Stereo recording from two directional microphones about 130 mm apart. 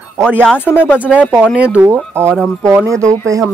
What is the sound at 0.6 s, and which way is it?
Speech, 15° left (ahead or behind).